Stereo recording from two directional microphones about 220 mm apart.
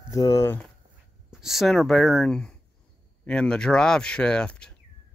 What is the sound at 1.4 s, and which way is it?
Speech, centre (ahead or behind).